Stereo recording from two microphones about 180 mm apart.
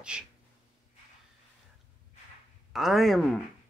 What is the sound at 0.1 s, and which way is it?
Speech, 5° right (ahead or behind).